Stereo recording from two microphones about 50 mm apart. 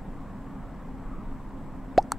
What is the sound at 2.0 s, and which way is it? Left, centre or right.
Plop, centre.